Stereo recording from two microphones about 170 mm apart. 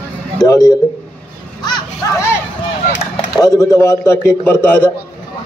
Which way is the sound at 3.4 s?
20° left (ahead or behind).